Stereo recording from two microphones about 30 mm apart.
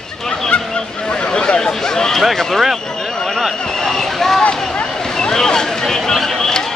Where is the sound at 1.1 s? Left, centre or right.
Left.